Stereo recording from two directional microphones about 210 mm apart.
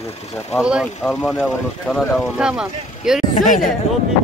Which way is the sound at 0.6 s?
5° right (ahead or behind).